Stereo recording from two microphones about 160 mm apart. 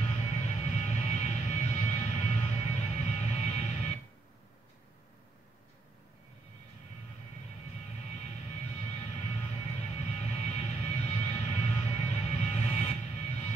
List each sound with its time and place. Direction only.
0.0 s vehicle: 40° left (ahead or behind)
8.2 s vehicle: 45° left (ahead or behind)